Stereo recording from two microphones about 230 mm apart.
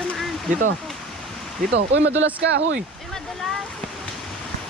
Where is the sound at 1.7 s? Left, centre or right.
Right.